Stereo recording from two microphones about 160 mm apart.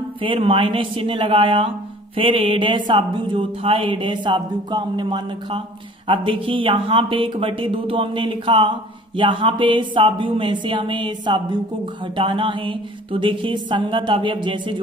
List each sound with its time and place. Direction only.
0.2 s speech: 35° right (ahead or behind)